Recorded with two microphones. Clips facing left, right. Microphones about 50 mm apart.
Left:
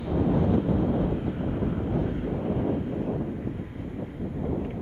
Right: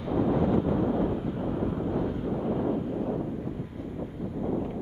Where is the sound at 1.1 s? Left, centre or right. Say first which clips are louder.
Left 1 dB; left.